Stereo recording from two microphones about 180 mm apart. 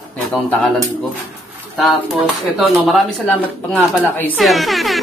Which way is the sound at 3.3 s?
10° left (ahead or behind).